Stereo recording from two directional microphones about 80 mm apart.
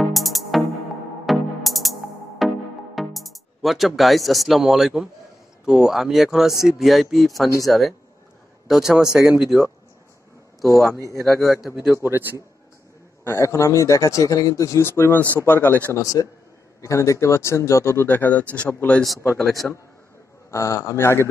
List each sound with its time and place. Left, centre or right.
0.1 s music: centre
5.7 s speech: centre
10.9 s speech: right
11.2 s speech: centre
12.0 s a man's voice: right
13.2 s speech: left
15.9 s a man's voice: left
18.0 s speech: left
19.3 s speech: centre
20.5 s speech: left